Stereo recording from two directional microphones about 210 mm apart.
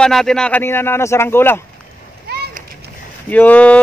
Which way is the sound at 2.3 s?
50° right (ahead or behind).